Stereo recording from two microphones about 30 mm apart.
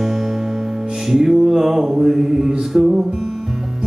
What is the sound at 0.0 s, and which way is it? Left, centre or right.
Music, centre.